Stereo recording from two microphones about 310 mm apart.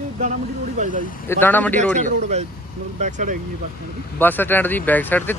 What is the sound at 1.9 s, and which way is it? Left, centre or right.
Speech, right.